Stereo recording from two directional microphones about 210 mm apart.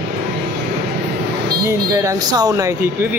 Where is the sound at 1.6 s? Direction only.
15° right (ahead or behind).